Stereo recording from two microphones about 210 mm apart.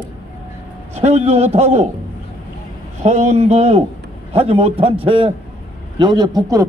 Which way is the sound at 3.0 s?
30° right (ahead or behind).